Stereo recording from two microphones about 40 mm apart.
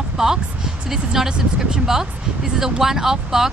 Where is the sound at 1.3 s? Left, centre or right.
Right.